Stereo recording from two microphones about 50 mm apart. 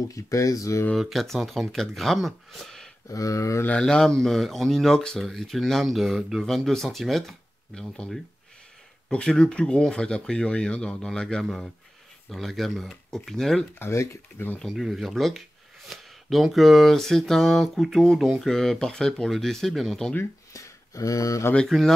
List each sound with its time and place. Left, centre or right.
0.1 s speech: left
0.9 s speech: centre
3.3 s speech: left
3.8 s speech: centre
9.1 s speech: centre
11.4 s speech: centre
13.7 s speech: left
14.6 s speech: centre
15.9 s a sound: centre
16.5 s speech: centre
20.5 s a sound: left
21.6 s speech: centre